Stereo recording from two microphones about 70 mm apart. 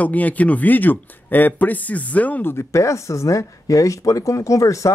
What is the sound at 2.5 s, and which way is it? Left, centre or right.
Speech, left.